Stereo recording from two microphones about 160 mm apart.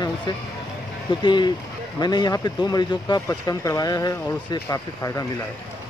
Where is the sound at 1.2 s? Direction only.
30° left (ahead or behind).